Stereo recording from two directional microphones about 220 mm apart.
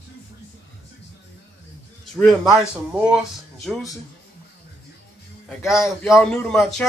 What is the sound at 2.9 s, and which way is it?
A man's voice, 5° right (ahead or behind).